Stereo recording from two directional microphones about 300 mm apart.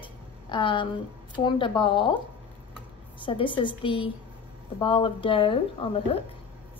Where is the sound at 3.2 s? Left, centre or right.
Centre.